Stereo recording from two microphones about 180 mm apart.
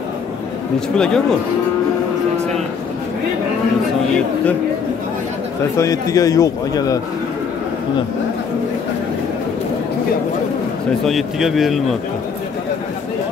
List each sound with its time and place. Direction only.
0.7 s speech: 5° left (ahead or behind)
5.8 s a man's voice: 20° left (ahead or behind)
11.1 s speech: centre (ahead or behind)